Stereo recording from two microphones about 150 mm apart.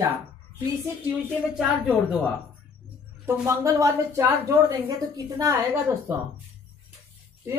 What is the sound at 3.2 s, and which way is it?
Speech, 20° right (ahead or behind).